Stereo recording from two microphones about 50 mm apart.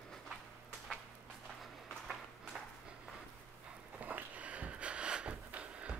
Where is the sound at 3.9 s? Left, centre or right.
Right.